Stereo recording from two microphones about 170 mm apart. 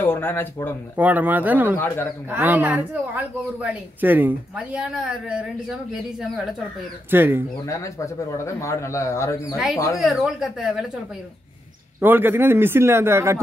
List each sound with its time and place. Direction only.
0.0 s speech: 10° left (ahead or behind)
0.9 s speech: 10° right (ahead or behind)
1.8 s speech: 15° left (ahead or behind)
2.2 s speech: 10° right (ahead or behind)
7.6 s speech: 20° left (ahead or behind)
9.9 s speech: centre (ahead or behind)
12.0 s speech: 10° right (ahead or behind)